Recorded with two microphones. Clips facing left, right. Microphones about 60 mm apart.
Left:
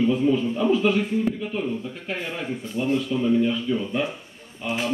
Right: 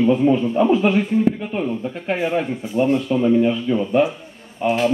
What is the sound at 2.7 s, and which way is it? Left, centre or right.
Speech, right.